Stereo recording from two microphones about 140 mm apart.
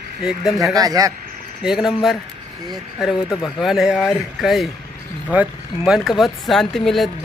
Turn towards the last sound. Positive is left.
turn(degrees=0)  # may be behind; listen again after turning